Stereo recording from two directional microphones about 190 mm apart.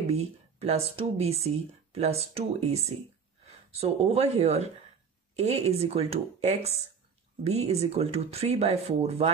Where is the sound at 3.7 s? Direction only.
35° right (ahead or behind).